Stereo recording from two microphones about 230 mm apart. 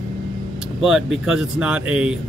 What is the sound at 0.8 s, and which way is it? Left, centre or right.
Speech, centre.